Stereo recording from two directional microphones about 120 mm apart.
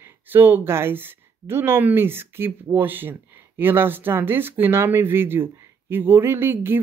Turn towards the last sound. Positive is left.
turn(degrees=-20)  # may be behind; listen again after turning